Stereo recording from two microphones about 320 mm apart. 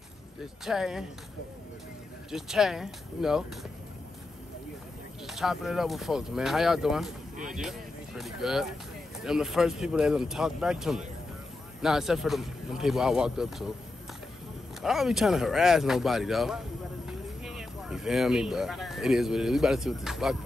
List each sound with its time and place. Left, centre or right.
0.7 s speech: centre
2.3 s speech: centre
5.2 s speech: centre
14.8 s speech: centre